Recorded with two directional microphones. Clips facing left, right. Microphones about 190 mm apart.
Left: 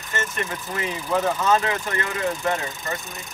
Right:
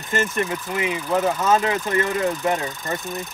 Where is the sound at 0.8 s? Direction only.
5° right (ahead or behind).